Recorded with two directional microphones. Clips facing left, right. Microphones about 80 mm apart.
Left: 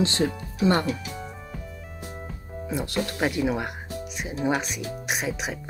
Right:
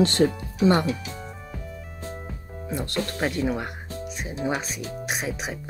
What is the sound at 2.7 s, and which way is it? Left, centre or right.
Speech, centre.